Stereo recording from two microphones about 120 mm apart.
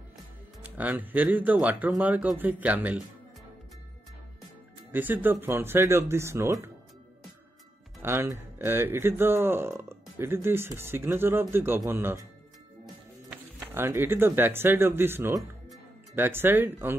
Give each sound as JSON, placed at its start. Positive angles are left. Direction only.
{"t": 0.7, "sound": "speech", "side_deg": -15}
{"t": 4.9, "sound": "speech", "side_deg": -15}
{"t": 8.0, "sound": "speech", "side_deg": -20}
{"t": 13.6, "sound": "speech", "side_deg": -20}